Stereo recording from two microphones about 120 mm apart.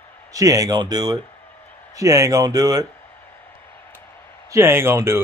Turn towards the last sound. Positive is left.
turn(degrees=-20)  # may be behind; listen again after turning